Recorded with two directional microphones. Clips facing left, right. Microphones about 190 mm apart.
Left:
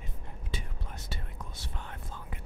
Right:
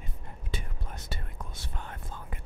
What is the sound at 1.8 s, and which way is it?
Whispering, 45° right (ahead or behind).